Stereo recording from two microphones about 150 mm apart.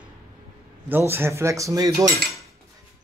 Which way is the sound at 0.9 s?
15° right (ahead or behind).